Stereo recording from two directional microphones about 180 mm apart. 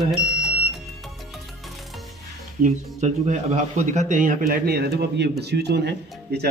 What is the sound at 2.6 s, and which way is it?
A man's voice, 40° right (ahead or behind).